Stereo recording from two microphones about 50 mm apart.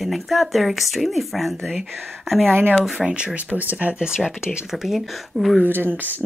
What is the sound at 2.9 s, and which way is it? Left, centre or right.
Speech, centre.